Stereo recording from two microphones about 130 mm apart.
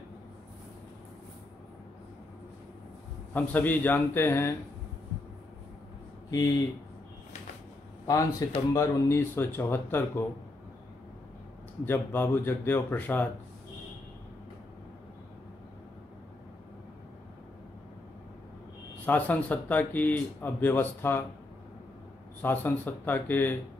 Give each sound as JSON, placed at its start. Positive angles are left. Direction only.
{"t": 3.3, "sound": "speech", "side_deg": 15}
{"t": 6.3, "sound": "speech", "side_deg": 30}
{"t": 8.1, "sound": "speech", "side_deg": 25}
{"t": 11.8, "sound": "speech", "side_deg": 15}
{"t": 19.0, "sound": "speech", "side_deg": 10}
{"t": 22.4, "sound": "speech", "side_deg": 15}